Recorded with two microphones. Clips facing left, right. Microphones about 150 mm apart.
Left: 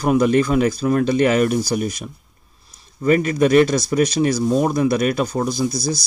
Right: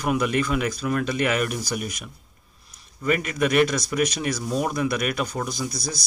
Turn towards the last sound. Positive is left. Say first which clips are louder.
# left 9 dB
turn(degrees=30)  # may be behind; listen again after turning